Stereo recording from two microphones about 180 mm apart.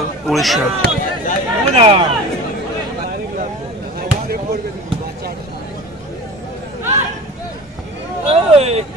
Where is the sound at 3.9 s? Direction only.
60° right (ahead or behind).